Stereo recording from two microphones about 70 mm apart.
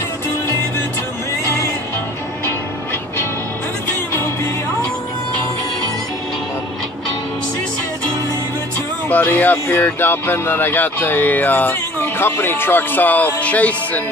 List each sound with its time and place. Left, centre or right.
9.1 s speech: left